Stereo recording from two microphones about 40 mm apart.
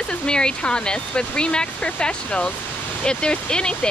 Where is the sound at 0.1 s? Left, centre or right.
Left.